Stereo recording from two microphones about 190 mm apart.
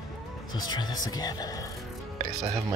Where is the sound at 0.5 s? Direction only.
20° left (ahead or behind).